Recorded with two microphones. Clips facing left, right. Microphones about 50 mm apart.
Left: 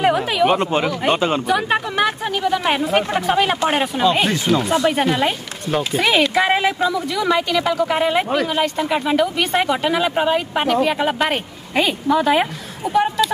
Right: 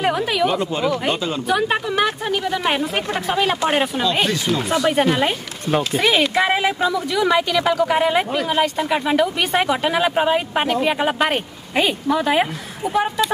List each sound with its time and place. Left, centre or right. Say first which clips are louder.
0.0 s a sound: left 2 dB; centre
0.5 s speech: left 2 dB; left
1.5 s speech: left 1 dB; centre